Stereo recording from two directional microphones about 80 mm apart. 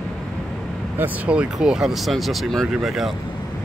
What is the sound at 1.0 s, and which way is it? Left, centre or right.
Speech, centre.